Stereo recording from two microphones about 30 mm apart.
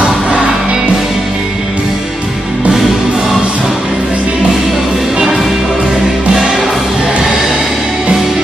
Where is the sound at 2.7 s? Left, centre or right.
Centre.